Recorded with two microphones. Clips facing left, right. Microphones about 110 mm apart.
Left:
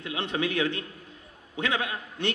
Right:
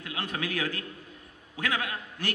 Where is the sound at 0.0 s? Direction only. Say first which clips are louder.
Left 5 dB; 25° left (ahead or behind).